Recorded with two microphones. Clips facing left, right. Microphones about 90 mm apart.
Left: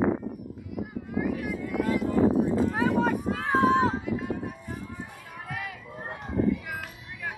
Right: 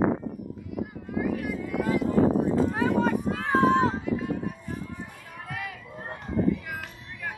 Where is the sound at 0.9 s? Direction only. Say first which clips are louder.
Even; centre (ahead or behind).